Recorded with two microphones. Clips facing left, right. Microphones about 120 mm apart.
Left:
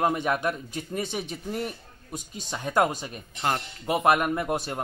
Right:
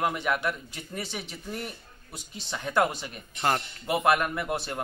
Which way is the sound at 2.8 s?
40° left (ahead or behind).